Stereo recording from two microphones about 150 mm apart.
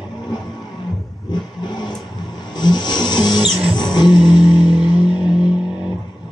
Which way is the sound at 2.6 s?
30° left (ahead or behind).